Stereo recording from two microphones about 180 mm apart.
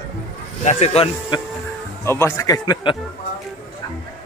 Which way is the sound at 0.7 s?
35° left (ahead or behind).